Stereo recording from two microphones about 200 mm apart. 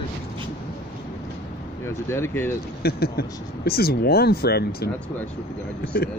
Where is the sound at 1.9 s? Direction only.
15° left (ahead or behind).